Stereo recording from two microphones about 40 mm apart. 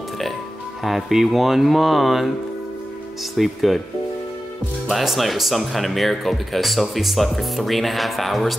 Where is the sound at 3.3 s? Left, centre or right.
Centre.